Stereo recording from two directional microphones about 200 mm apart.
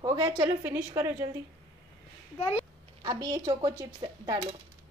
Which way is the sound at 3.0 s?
20° right (ahead or behind).